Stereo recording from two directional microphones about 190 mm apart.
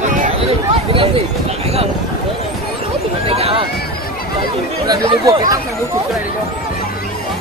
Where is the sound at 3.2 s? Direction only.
30° right (ahead or behind).